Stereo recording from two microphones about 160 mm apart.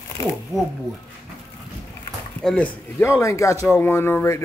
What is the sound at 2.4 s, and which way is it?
A man's voice, 10° left (ahead or behind).